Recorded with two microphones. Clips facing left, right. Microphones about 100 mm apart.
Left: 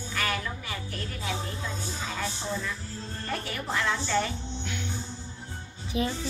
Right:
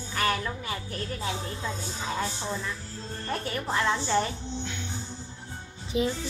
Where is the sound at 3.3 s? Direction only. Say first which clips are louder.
Right 2 dB; 30° right (ahead or behind).